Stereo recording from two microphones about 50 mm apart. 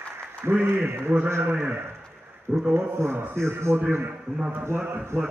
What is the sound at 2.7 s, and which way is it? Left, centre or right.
A man's voice, right.